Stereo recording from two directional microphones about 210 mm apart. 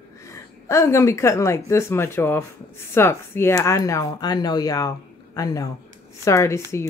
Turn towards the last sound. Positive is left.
turn(degrees=15)  # may be behind; listen again after turning